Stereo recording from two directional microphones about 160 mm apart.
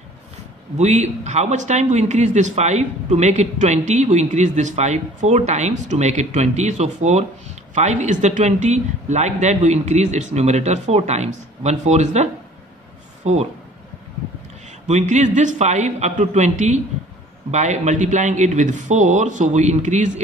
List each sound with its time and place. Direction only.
0.7 s speech: 45° right (ahead or behind)
14.9 s speech: 45° right (ahead or behind)